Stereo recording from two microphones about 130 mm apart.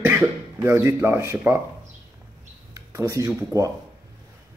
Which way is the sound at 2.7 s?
25° right (ahead or behind).